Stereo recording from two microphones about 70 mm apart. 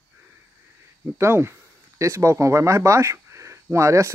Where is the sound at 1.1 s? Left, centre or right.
Right.